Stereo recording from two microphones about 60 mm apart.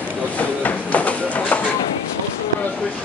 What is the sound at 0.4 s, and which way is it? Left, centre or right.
Train, left.